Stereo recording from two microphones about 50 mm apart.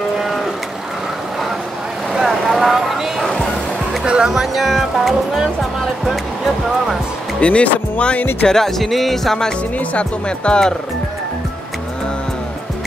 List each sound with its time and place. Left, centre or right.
0.2 s cattle: centre
2.4 s a sound: centre
4.0 s music: centre
4.3 s speech: centre
7.3 s speech: left
8.5 s speech: centre
9.8 s speech: left